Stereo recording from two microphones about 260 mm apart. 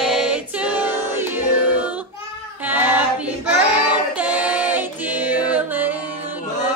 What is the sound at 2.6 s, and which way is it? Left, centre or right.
Female singing, centre.